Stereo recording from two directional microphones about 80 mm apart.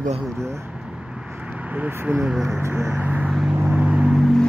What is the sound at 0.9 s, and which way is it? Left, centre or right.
Vehicle, centre.